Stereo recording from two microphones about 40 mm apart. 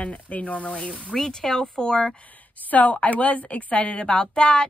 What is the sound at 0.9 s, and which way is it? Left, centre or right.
Speech, centre.